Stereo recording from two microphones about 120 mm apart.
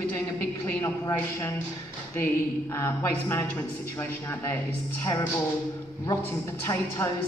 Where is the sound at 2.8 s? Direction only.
25° left (ahead or behind).